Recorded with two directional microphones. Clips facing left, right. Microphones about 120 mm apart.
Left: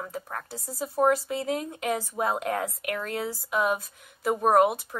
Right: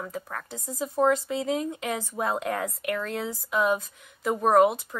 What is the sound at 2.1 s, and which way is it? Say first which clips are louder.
A woman's voice: right 2 dB; 5° left (ahead or behind).